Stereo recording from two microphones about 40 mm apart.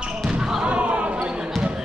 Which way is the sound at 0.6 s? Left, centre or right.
Right.